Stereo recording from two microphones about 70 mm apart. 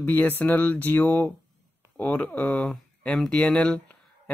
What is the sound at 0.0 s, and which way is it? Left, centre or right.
A man's voice, left.